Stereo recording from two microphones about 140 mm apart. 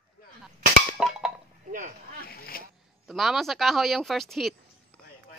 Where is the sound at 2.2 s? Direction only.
90° left.